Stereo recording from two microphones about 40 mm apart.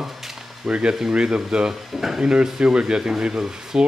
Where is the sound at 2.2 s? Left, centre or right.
Right.